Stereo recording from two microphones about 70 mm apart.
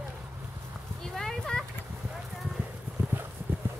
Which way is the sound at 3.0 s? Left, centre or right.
Right.